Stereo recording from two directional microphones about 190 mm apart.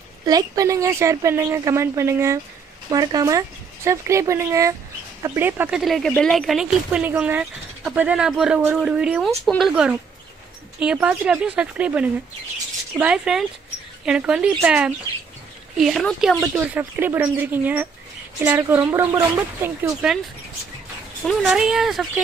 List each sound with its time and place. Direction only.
0.3 s a woman's voice: 20° right (ahead or behind)
21.2 s speech: centre (ahead or behind)